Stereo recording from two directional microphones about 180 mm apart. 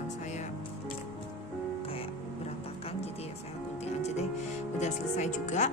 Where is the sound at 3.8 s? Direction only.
35° left (ahead or behind).